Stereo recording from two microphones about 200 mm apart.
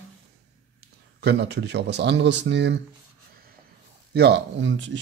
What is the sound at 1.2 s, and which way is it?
Speech, 55° right (ahead or behind).